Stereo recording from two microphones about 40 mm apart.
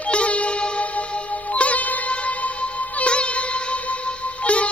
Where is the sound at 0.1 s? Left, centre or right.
Left.